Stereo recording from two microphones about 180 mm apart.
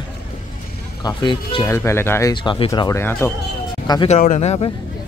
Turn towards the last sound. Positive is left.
turn(degrees=35)  # may be behind; listen again after turning